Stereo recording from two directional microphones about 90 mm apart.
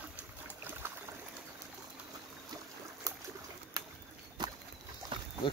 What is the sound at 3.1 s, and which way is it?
Boat, 45° right (ahead or behind).